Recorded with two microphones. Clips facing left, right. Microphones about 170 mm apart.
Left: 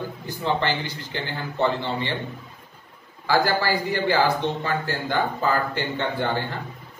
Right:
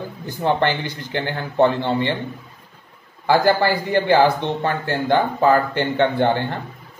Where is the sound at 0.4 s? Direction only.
55° right (ahead or behind).